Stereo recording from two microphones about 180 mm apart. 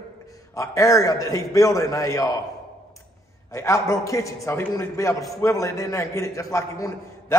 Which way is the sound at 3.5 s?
15° left (ahead or behind).